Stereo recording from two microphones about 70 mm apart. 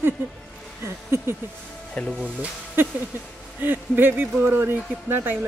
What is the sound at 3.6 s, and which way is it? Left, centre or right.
Speech, right.